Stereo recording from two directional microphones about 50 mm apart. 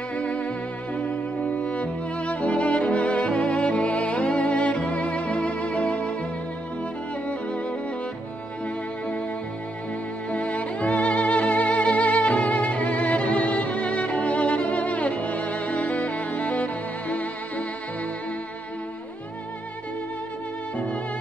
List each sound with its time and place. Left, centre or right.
0.1 s music: left
10.3 s music: left
20.7 s music: left